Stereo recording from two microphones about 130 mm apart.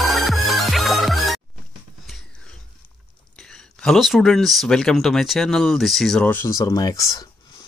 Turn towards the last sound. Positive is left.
turn(degrees=25)  # may be behind; listen again after turning